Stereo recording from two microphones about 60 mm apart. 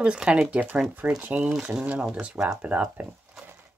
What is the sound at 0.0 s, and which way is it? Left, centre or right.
Speech, centre.